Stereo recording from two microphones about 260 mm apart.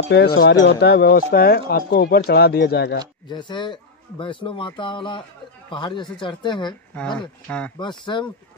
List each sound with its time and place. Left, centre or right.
0.4 s speech: left
3.3 s speech: centre
7.0 s speech: centre
7.8 s speech: centre